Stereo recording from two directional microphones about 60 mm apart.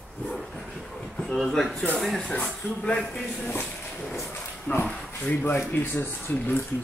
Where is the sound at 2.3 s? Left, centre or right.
Left.